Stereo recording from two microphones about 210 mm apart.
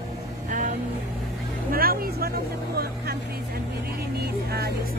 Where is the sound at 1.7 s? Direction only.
45° right (ahead or behind).